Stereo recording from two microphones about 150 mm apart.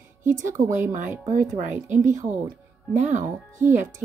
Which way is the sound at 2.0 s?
55° right (ahead or behind).